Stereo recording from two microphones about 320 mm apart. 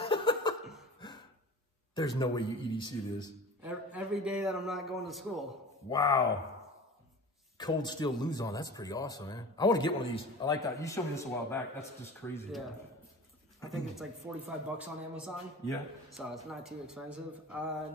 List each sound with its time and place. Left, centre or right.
0.0 s a sound: centre
2.0 s speech: centre
3.6 s a man's voice: centre
5.9 s speech: centre
7.5 s speech: centre